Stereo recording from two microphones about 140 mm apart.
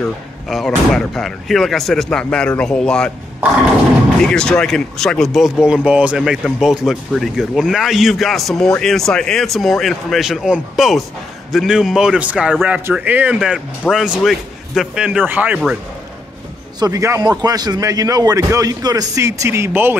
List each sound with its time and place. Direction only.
0.5 s speech: centre (ahead or behind)
4.2 s speech: 5° left (ahead or behind)
16.8 s a man's voice: 20° right (ahead or behind)